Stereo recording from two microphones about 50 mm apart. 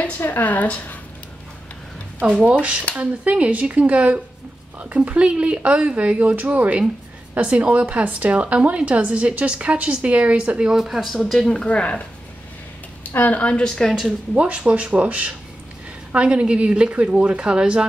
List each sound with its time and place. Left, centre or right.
0.2 s speech: left
3.0 s speech: right
10.7 s speech: centre
11.5 s speech: left
13.1 s speech: left
13.4 s speech: left
13.7 s speech: centre
14.0 s speech: right